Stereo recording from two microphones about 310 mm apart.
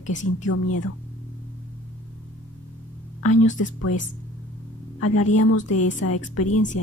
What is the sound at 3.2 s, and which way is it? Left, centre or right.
Speech, left.